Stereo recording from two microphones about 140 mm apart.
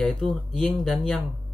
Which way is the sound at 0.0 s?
5° left (ahead or behind).